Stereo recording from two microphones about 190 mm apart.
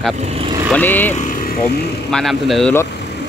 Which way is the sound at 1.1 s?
45° left (ahead or behind).